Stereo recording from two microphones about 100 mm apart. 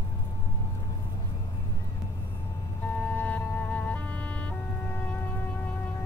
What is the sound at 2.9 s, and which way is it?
Music, 15° left (ahead or behind).